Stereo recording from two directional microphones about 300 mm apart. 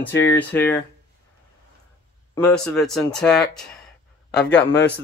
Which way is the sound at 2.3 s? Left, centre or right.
Centre.